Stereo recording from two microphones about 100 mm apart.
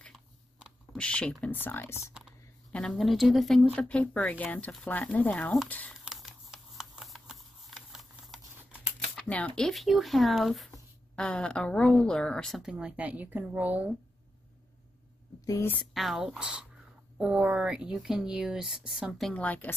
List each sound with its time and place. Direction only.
0.9 s a woman's voice: 10° left (ahead or behind)
1.5 s speech: 20° left (ahead or behind)
2.9 s a woman's voice: centre (ahead or behind); by 5.9 s 15° left (ahead or behind)
6.0 s a sound: 5° right (ahead or behind)
9.1 s a sound: 10° left (ahead or behind)
9.6 s a woman's voice: centre (ahead or behind)
12.6 s speech: 10° right (ahead or behind)
15.6 s a woman's voice: 15° left (ahead or behind)
15.9 s speech: centre (ahead or behind)
19.3 s a woman's voice: 15° left (ahead or behind)